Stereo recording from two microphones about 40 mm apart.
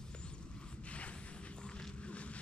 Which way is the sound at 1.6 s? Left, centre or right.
Left.